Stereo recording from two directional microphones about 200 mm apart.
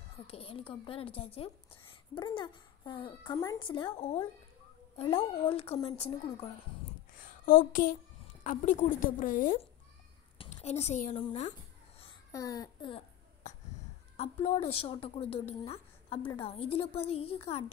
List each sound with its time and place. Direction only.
0.3 s a woman's voice: 30° left (ahead or behind)
7.4 s a sound: 40° left (ahead or behind)
8.5 s a woman's voice: 40° left (ahead or behind)
10.3 s speech: 30° left (ahead or behind)
12.3 s a child's voice: 15° left (ahead or behind)
14.1 s a woman's voice: 30° left (ahead or behind)